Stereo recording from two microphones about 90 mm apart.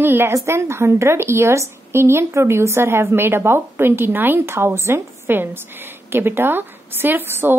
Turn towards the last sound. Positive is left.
turn(degrees=-25)  # may be behind; listen again after turning